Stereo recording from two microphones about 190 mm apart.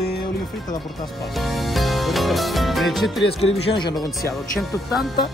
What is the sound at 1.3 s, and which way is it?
Music, centre (ahead or behind).